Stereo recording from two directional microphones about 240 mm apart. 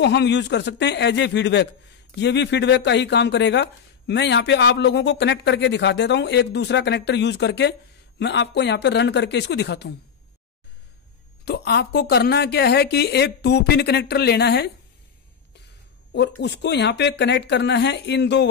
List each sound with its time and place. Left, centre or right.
0.0 s a man's voice: left
11.4 s a man's voice: left
16.1 s a man's voice: left